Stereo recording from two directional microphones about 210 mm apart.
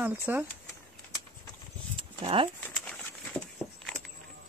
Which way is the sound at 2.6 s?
5° left (ahead or behind).